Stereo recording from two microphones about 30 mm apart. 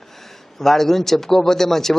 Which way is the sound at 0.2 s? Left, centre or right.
Centre.